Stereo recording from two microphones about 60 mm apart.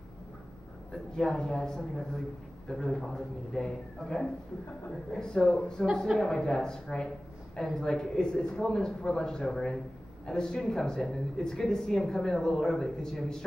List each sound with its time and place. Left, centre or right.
1.1 s speech: centre